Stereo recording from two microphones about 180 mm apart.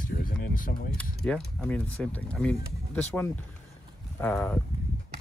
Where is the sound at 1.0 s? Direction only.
5° left (ahead or behind).